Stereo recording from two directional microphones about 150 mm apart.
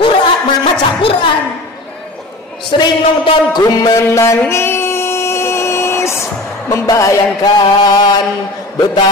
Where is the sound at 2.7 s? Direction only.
35° left (ahead or behind).